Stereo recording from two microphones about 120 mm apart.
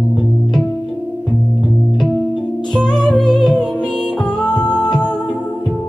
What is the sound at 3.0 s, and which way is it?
Music, 5° left (ahead or behind).